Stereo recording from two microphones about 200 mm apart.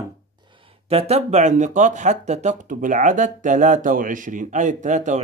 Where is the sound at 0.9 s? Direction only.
35° right (ahead or behind).